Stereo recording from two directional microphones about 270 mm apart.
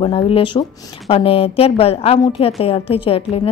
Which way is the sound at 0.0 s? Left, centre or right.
Centre.